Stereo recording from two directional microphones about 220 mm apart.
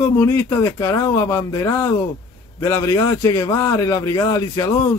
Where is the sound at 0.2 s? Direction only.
15° left (ahead or behind).